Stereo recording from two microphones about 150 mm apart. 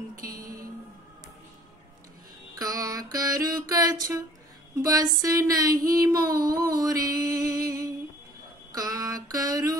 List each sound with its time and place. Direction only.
0.3 s music: 75° right (ahead or behind)
2.5 s music: 25° right (ahead or behind)
5.2 s a sound: 25° right (ahead or behind)
7.1 s music: 25° right (ahead or behind)
8.7 s mantra: 25° right (ahead or behind)